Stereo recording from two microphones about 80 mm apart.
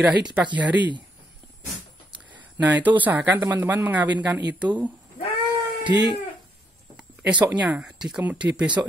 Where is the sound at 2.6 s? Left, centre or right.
Right.